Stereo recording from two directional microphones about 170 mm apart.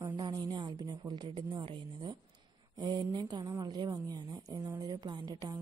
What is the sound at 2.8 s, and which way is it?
Speech, 25° right (ahead or behind).